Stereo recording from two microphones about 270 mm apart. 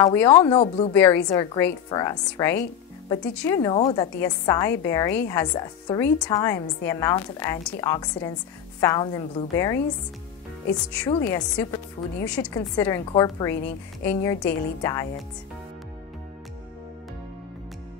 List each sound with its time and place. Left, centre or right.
0.0 s a woman's voice: centre
0.6 s a woman's voice: left
0.9 s a woman's voice: centre
11.1 s a woman's voice: centre